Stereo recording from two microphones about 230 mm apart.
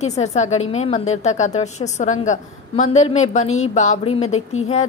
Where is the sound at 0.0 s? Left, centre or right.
Left.